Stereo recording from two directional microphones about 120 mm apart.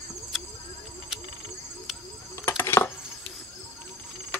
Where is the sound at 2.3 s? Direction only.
20° left (ahead or behind).